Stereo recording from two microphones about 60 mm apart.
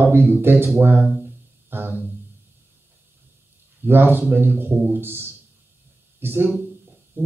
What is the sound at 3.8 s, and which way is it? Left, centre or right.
A man's voice, right.